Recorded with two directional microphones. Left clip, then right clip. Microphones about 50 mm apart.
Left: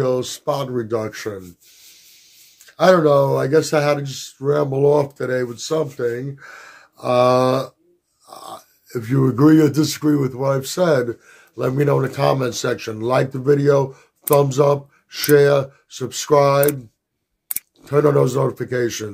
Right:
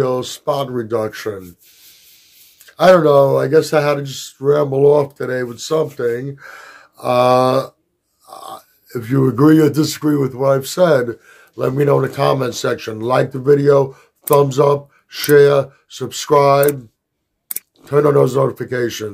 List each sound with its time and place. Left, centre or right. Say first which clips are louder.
0.0 s speech: right 2 dB; right
2.6 s speech: right 4 dB; right
4.0 s speech: right 5 dB; right
4.6 s speech: right 4 dB; right
4.8 s speech: right 3 dB; centre
5.5 s speech: right 4 dB; right
8.3 s speech: right 3 dB; right
17.8 s speech: right 3 dB; right